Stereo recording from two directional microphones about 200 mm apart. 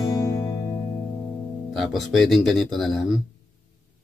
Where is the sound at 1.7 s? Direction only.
Centre (ahead or behind).